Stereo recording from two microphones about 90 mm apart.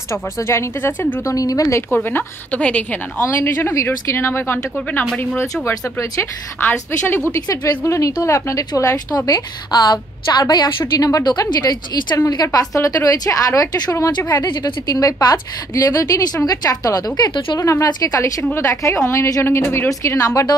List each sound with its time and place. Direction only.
0.1 s speech: 30° left (ahead or behind)
1.3 s speech: 40° left (ahead or behind)
2.0 s a woman's voice: 20° left (ahead or behind)
3.2 s speech: 30° left (ahead or behind)
7.4 s a woman's voice: 40° left (ahead or behind)
12.3 s speech: 40° left (ahead or behind)
14.4 s a woman's voice: 45° left (ahead or behind)
19.4 s speech: 25° left (ahead or behind)